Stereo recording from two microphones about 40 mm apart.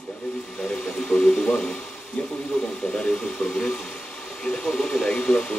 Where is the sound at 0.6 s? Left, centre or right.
Centre.